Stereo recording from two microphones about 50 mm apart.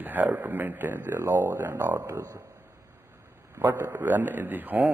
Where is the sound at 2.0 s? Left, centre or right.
Right.